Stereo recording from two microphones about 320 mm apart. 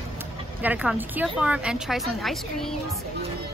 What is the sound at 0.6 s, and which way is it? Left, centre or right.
Speech, centre.